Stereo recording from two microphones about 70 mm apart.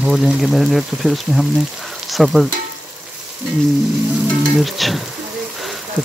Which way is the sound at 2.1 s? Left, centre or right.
Centre.